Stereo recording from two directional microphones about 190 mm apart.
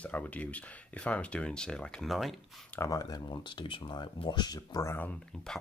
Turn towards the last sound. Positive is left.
turn(degrees=5)  # may be behind; listen again after turning